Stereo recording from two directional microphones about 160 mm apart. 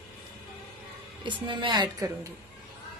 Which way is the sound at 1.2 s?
30° right (ahead or behind).